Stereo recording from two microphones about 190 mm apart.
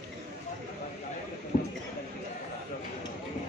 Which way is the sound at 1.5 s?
40° left (ahead or behind).